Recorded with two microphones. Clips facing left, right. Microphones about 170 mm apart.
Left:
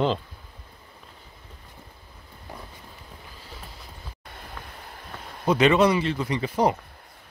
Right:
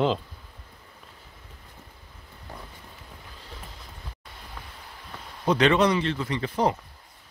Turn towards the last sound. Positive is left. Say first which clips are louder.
# left 2 dB
turn(degrees=15)  # may be behind; listen again after turning